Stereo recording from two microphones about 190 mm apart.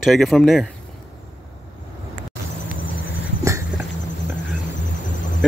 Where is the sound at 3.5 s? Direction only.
15° right (ahead or behind).